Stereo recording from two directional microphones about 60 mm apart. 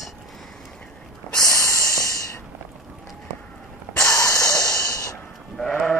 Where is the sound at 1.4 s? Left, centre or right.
Left.